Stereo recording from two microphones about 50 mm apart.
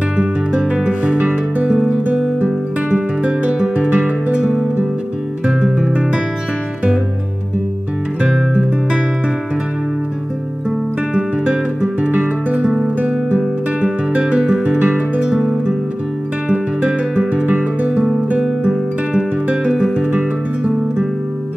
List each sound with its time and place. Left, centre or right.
0.2 s music: right
5.6 s music: centre
11.1 s guitar: centre
12.8 s music: right
13.4 s guitar: centre
14.8 s music: right
16.4 s music: centre
17.8 s music: centre
19.4 s music: right
19.7 s music: centre